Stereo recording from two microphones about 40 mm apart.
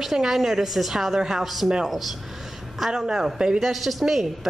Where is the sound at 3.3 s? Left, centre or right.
Centre.